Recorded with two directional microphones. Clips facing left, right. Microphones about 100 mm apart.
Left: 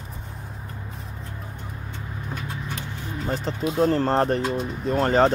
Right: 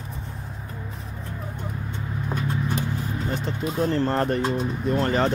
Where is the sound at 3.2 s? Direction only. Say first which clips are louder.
Left 4 dB; 35° left (ahead or behind).